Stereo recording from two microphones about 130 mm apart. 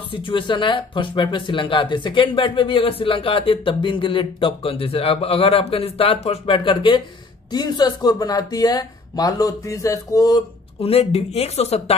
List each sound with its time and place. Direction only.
0.1 s speech: 40° left (ahead or behind)
10.8 s speech: 50° left (ahead or behind)